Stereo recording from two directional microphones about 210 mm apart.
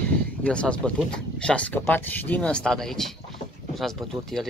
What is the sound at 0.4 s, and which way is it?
Speech, 5° left (ahead or behind).